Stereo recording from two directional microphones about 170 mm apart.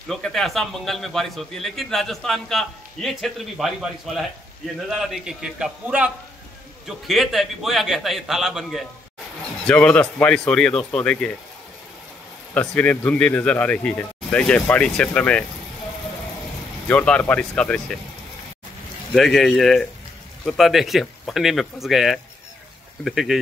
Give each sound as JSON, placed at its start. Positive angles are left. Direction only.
{"t": 0.1, "sound": "a man's voice", "side_deg": 0}
{"t": 7.1, "sound": "a man's voice", "side_deg": 0}
{"t": 12.5, "sound": "speech", "side_deg": 10}
{"t": 16.8, "sound": "speech", "side_deg": 5}
{"t": 19.1, "sound": "a man's voice", "side_deg": 0}